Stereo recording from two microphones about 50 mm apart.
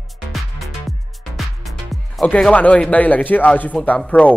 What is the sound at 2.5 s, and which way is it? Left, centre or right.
Speech, left.